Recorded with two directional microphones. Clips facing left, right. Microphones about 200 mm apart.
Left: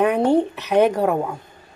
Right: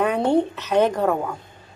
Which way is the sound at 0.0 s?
15° left (ahead or behind).